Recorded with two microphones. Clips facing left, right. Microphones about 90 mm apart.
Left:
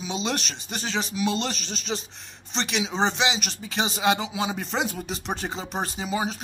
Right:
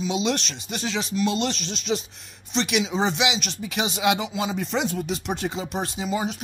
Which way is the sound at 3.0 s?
5° right (ahead or behind).